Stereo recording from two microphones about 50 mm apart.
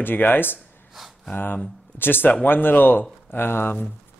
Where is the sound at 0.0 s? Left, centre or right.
Left.